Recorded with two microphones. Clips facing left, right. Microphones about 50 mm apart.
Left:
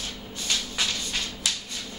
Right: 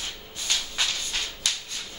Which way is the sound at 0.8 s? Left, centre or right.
Centre.